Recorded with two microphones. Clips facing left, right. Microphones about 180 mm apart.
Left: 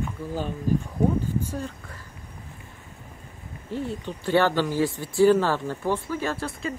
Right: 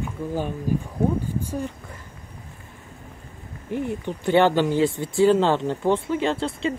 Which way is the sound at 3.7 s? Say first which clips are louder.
Right 4 dB; 15° right (ahead or behind).